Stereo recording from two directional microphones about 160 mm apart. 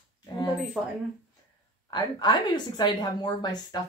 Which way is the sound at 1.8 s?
25° left (ahead or behind).